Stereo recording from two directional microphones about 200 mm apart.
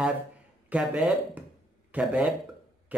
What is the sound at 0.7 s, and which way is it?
Speech, 5° right (ahead or behind).